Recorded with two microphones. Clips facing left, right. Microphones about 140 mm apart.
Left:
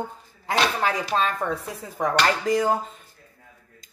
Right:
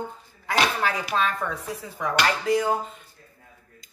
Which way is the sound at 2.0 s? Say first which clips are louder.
Left 3 dB; 45° left (ahead or behind).